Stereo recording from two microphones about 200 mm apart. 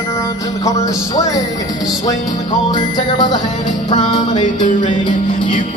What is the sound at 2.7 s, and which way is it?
Music, 20° left (ahead or behind).